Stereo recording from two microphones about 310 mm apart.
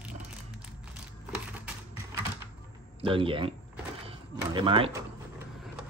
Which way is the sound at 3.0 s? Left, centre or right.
Centre.